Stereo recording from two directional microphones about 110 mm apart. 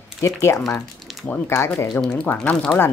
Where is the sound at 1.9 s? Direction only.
10° left (ahead or behind).